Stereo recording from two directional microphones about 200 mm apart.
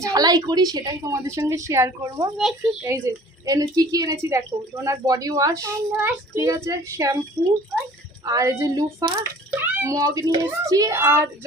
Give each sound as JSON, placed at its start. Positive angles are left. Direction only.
{"t": 0.0, "sound": "speech", "side_deg": -20}
{"t": 3.4, "sound": "speech", "side_deg": -20}
{"t": 8.3, "sound": "speech", "side_deg": -15}